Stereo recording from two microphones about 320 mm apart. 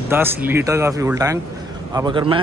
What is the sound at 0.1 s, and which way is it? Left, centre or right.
Speech, centre.